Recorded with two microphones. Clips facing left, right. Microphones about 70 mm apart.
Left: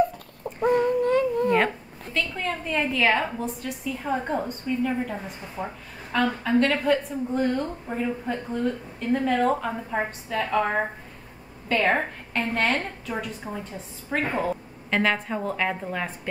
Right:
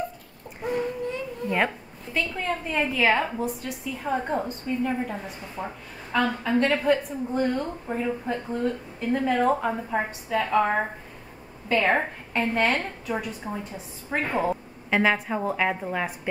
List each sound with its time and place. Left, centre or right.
0.6 s baby cry: left
2.3 s a woman's voice: centre